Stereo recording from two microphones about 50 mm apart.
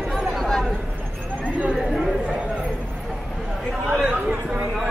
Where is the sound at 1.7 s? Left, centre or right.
Centre.